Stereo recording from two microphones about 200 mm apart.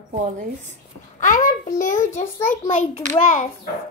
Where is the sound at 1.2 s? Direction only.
40° left (ahead or behind).